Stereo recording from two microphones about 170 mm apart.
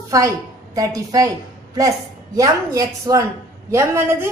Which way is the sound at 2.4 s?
20° right (ahead or behind).